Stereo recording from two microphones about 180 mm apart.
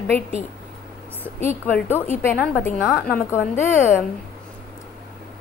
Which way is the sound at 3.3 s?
15° left (ahead or behind).